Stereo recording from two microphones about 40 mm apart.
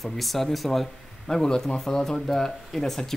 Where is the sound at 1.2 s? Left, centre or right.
Centre.